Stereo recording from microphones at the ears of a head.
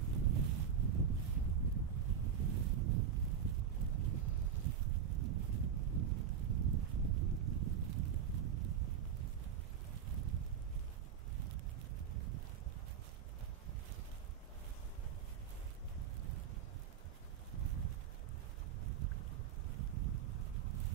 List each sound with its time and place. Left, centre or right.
0.0 s boat: right
10.1 s wind: right
12.1 s boat: right
17.6 s a sound: right
18.9 s boat: right